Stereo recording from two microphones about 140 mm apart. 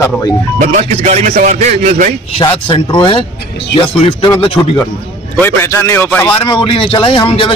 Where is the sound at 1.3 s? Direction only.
65° right (ahead or behind).